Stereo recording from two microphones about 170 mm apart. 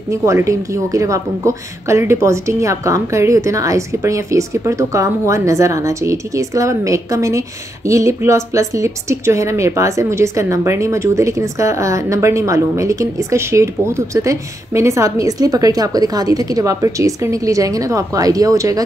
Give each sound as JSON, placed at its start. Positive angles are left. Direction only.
{"t": 0.1, "sound": "a woman's voice", "side_deg": -15}